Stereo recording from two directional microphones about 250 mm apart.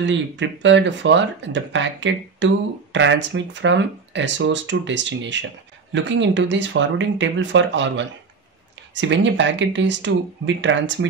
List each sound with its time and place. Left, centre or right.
0.0 s speech: right